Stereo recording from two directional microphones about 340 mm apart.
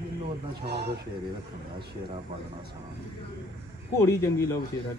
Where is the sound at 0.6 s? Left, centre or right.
Right.